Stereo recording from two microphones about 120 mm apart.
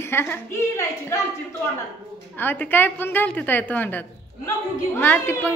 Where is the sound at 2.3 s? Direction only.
15° left (ahead or behind).